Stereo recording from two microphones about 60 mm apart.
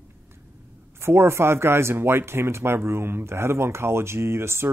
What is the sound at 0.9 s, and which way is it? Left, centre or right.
Speech, right.